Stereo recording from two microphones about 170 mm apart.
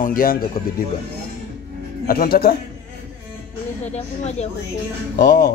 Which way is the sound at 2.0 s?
60° left (ahead or behind).